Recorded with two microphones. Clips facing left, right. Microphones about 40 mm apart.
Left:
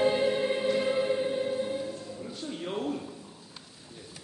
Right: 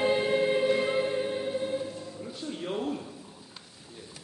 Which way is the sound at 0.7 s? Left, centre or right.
Centre.